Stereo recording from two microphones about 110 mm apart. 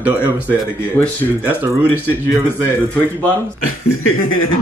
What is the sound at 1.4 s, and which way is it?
Speech, 20° right (ahead or behind).